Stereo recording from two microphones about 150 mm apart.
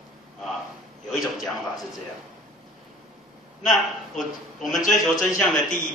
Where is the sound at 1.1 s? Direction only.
Centre (ahead or behind).